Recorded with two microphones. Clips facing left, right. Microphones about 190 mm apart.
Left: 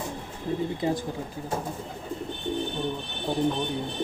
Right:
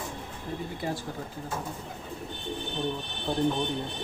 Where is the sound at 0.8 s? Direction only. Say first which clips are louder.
Left 6 dB; 20° left (ahead or behind).